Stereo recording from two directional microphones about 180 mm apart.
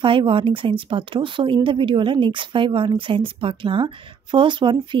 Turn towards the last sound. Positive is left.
turn(degrees=-25)  # may be behind; listen again after turning